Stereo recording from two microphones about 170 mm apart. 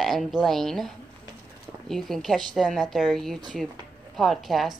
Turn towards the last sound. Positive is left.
turn(degrees=0)  # may be behind; listen again after turning